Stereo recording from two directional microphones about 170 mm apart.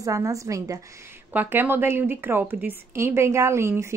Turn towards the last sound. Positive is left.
turn(degrees=-15)  # may be behind; listen again after turning